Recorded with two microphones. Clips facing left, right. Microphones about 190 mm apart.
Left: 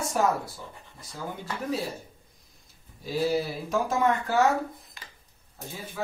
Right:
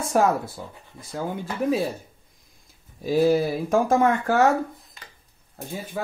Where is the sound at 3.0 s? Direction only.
50° right (ahead or behind).